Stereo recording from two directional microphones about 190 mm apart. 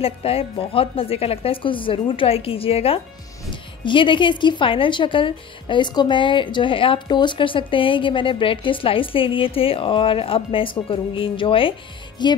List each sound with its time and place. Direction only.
0.0 s a woman's voice: 30° left (ahead or behind)